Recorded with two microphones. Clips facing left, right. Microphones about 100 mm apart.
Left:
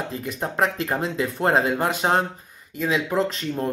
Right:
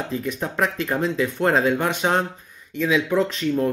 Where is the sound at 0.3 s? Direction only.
35° left (ahead or behind).